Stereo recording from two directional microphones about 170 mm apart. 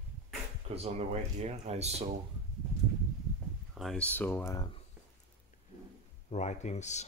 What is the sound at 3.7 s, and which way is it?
Speech, centre (ahead or behind).